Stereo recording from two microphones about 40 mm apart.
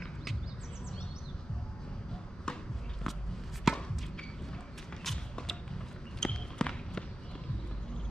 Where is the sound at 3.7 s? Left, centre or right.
Centre.